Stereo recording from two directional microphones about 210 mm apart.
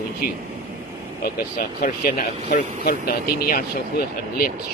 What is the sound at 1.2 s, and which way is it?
Speech, 50° left (ahead or behind).